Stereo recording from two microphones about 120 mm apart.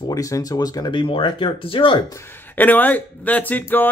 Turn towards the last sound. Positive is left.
turn(degrees=15)  # may be behind; listen again after turning